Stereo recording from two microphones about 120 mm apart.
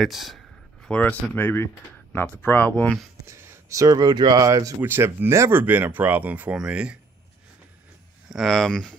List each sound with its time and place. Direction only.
0.0 s speech: centre (ahead or behind)
0.8 s speech: 10° left (ahead or behind)
3.3 s speech: 20° right (ahead or behind)
4.8 s speech: 20° right (ahead or behind)
8.3 s speech: centre (ahead or behind)